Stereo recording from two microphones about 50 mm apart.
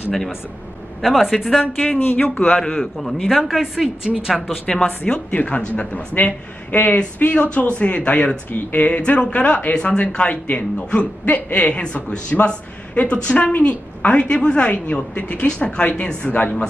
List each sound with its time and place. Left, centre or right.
1.0 s a man's voice: centre
2.0 s a man's voice: left
2.4 s a man's voice: centre
3.3 s a woman's voice: centre
4.6 s a man's voice: left
16.3 s speech: left